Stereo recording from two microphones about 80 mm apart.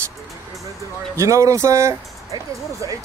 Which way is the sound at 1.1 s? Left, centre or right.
Right.